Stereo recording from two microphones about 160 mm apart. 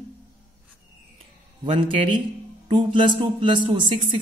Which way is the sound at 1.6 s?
30° right (ahead or behind).